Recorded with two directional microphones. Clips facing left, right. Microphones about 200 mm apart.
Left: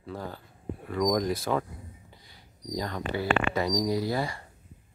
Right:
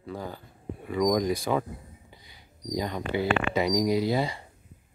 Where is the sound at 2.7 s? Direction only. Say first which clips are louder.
Right 2 dB; 15° right (ahead or behind).